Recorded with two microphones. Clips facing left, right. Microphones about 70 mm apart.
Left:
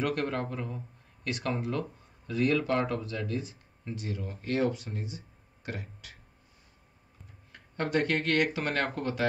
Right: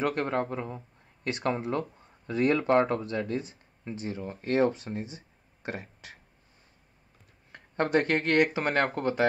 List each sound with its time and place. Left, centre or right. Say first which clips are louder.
0.0 s speech: right 2 dB; right
3.8 s speech: right 2 dB; right
7.5 s speech: right 4 dB; right